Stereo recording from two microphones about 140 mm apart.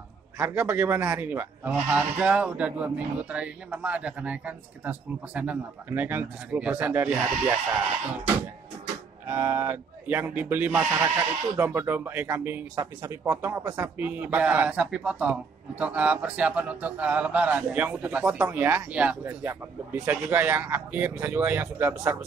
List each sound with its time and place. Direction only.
0.4 s a man's voice: 15° right (ahead or behind)
9.3 s a man's voice: 15° right (ahead or behind)
12.7 s speech: 25° right (ahead or behind)
13.2 s a man's voice: 15° right (ahead or behind)